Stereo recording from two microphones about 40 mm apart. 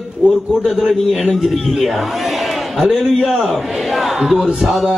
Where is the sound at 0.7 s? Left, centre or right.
Centre.